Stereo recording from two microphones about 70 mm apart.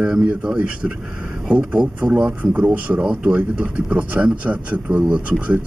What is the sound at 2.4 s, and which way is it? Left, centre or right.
Speech, centre.